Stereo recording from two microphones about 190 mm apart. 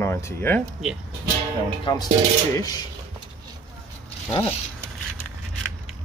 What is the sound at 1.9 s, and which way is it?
Speech, 25° left (ahead or behind).